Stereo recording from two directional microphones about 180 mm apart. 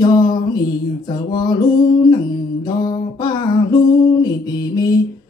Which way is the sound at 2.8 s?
25° left (ahead or behind).